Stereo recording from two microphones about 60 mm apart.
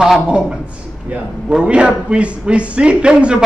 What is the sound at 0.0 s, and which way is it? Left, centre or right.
A man's voice, centre.